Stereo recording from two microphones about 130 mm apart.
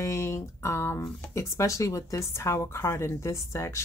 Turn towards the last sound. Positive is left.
turn(degrees=20)  # may be behind; listen again after turning